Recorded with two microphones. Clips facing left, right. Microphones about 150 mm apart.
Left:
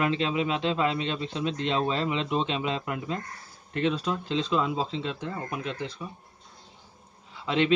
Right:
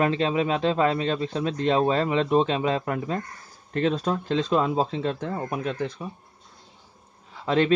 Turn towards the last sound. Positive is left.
turn(degrees=-40)  # may be behind; listen again after turning